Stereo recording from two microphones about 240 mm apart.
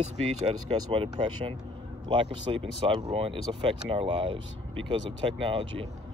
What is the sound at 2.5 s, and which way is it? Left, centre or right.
Speech, centre.